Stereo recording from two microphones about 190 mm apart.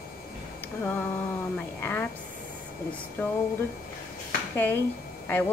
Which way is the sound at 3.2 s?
10° left (ahead or behind).